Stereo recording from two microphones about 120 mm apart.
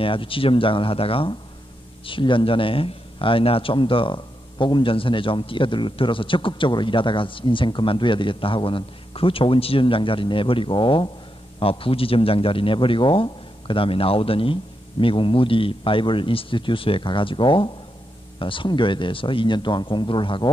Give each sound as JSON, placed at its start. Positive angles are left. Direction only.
{"t": 0.0, "sound": "a man's voice", "side_deg": 45}